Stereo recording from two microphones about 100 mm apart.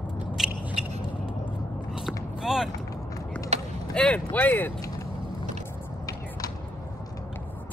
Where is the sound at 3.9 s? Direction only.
10° left (ahead or behind).